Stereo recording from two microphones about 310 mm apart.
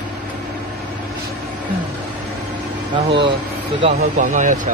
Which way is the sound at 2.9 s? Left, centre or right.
Centre.